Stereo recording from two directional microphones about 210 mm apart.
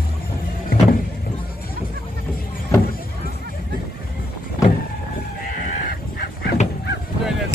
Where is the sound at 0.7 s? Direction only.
45° left (ahead or behind).